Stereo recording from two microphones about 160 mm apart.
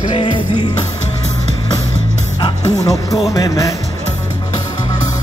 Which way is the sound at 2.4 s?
25° left (ahead or behind).